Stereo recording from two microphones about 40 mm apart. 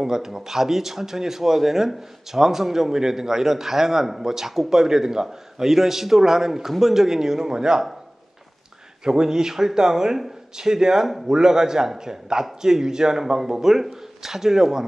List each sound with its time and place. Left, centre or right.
0.0 s speech: centre
9.0 s speech: centre